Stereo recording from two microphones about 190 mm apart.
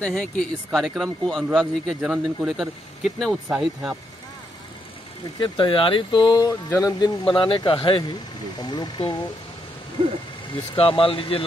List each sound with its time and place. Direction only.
0.0 s speech: 5° left (ahead or behind)
5.4 s speech: 25° left (ahead or behind)
10.8 s speech: 30° left (ahead or behind)